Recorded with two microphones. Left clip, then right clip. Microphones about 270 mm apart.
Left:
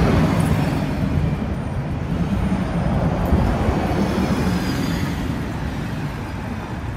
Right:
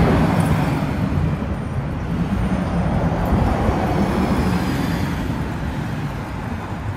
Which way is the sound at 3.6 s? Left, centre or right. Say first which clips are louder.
Right 1 dB; right.